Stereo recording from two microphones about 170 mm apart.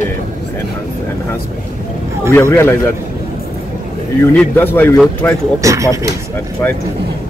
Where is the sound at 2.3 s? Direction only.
15° left (ahead or behind).